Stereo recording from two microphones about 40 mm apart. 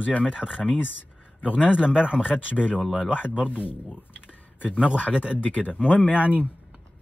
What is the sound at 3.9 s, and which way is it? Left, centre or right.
Typing, right.